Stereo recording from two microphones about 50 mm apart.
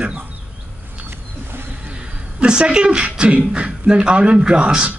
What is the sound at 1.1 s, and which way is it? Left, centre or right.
Rodents, right.